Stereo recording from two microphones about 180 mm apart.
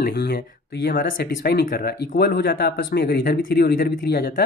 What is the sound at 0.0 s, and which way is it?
Speech, 60° left (ahead or behind).